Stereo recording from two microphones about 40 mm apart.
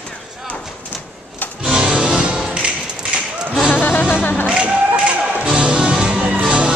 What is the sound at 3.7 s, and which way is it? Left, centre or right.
Music, left.